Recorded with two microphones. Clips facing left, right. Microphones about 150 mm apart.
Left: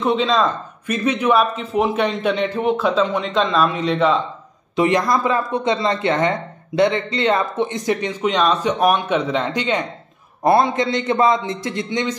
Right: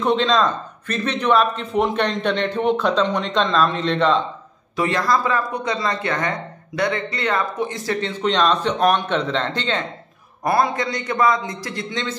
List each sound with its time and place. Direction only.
0.0 s speech: 5° left (ahead or behind)
4.7 s a man's voice: 20° left (ahead or behind)
10.4 s a man's voice: 25° left (ahead or behind)